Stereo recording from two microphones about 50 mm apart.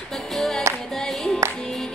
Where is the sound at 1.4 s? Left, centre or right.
Right.